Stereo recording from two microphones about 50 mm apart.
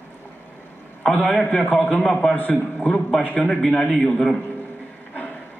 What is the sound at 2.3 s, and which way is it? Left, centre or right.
Speech, left.